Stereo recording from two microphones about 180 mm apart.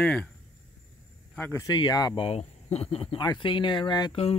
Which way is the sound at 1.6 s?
20° left (ahead or behind).